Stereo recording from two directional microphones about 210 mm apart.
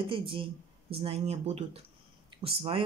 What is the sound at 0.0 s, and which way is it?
Speech, 25° right (ahead or behind).